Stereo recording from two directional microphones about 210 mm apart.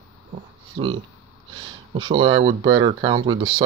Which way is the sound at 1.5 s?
25° right (ahead or behind).